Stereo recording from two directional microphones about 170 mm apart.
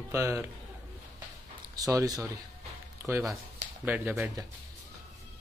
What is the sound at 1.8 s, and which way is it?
A man's voice, 20° right (ahead or behind).